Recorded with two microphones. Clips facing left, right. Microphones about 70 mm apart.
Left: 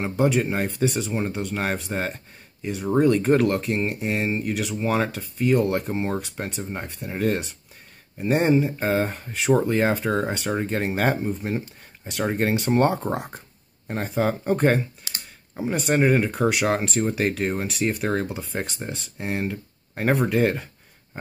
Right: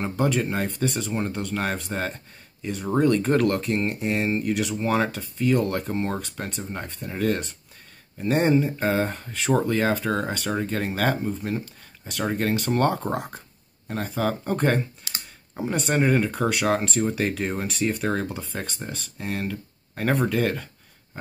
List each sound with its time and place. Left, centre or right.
0.0 s speech: centre